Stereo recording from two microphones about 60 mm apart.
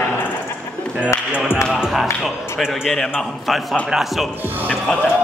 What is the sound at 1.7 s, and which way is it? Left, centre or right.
A man's voice, centre.